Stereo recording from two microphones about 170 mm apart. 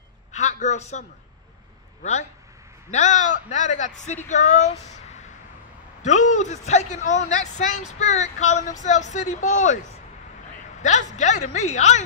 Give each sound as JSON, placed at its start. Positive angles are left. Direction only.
{"t": 0.3, "sound": "a sound", "side_deg": 45}
{"t": 2.9, "sound": "speech", "side_deg": 45}
{"t": 10.8, "sound": "speech", "side_deg": 45}